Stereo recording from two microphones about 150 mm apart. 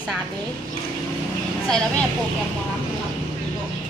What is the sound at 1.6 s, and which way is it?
Speech, 5° left (ahead or behind).